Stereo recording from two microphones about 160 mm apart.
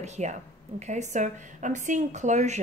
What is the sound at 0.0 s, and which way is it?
A woman's voice, 45° right (ahead or behind).